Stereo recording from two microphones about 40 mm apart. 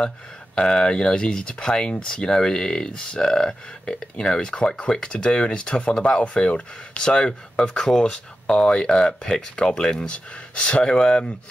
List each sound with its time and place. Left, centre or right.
0.6 s speech: left